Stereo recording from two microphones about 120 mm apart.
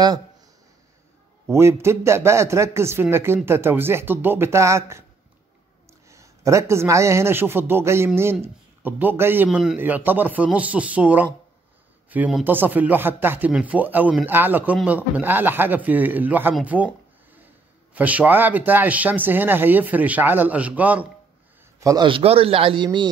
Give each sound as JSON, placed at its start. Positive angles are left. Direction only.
{"t": 1.5, "sound": "a man's voice", "side_deg": -20}
{"t": 6.0, "sound": "a man's voice", "side_deg": -25}
{"t": 9.5, "sound": "a man's voice", "side_deg": -5}
{"t": 9.8, "sound": "speech", "side_deg": -15}
{"t": 16.6, "sound": "a sound", "side_deg": -10}
{"t": 17.9, "sound": "speech", "side_deg": -10}
{"t": 21.7, "sound": "a man's voice", "side_deg": -30}
{"t": 22.0, "sound": "speech", "side_deg": -50}